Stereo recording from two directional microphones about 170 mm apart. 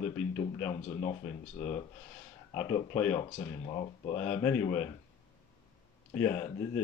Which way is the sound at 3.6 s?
30° left (ahead or behind).